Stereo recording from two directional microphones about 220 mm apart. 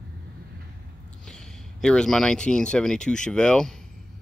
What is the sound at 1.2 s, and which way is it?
Speech, 5° left (ahead or behind).